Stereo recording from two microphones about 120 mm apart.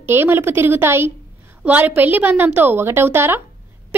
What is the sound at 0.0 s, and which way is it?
A woman's voice, 20° right (ahead or behind).